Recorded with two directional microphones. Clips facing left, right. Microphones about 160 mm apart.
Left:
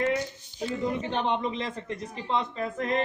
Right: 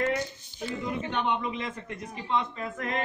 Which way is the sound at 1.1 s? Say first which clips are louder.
Left 2 dB; 35° left (ahead or behind).